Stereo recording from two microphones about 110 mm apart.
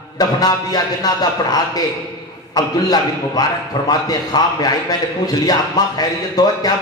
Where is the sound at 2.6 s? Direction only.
35° left (ahead or behind).